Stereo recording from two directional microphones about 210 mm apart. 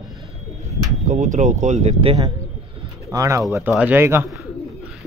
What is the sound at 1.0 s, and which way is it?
Speech, 35° right (ahead or behind).